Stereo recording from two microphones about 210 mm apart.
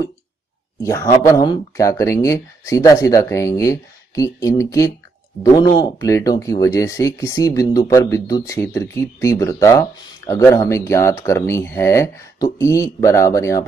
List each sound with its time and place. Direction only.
0.8 s speech: 15° left (ahead or behind)